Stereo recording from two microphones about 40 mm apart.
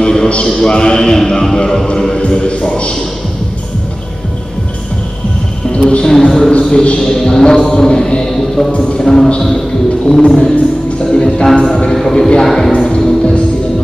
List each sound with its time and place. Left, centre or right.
0.0 s a sound: centre
0.7 s mantra: left
1.9 s music: centre
5.7 s speech: left
6.0 s a sound: centre
6.6 s speech: left
7.0 s mantra: centre
7.5 s music: left
7.8 s mantra: centre
11.1 s music: centre
11.9 s mantra: centre
12.4 s speech: centre
12.7 s music: centre